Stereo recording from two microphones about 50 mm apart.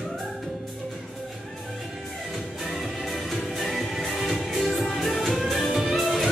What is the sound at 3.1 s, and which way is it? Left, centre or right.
Music, centre.